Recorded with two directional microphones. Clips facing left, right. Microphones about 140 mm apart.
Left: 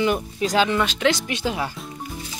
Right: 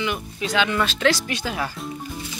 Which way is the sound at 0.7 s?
15° left (ahead or behind).